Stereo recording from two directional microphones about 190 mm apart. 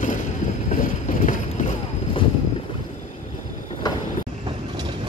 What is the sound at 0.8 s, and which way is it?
Clip-clop, 45° left (ahead or behind).